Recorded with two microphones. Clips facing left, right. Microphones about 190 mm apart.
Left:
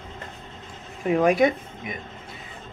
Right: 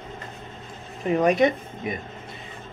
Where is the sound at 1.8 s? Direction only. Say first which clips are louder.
Right 5 dB; 35° right (ahead or behind).